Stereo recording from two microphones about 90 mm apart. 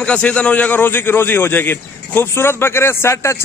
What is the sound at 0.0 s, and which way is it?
A man's voice, 10° left (ahead or behind).